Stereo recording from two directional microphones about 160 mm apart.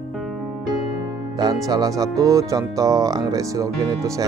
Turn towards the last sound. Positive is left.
turn(degrees=-20)  # may be behind; listen again after turning